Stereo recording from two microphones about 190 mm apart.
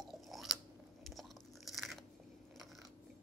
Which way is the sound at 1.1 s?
Centre (ahead or behind).